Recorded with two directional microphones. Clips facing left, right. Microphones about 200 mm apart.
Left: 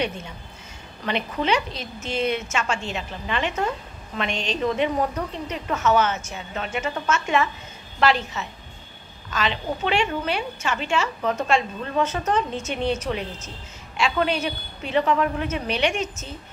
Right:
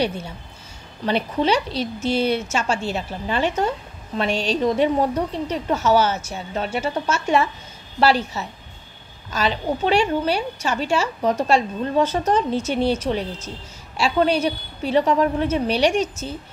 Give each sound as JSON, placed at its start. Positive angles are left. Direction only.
{"t": 1.0, "sound": "a woman's voice", "side_deg": -35}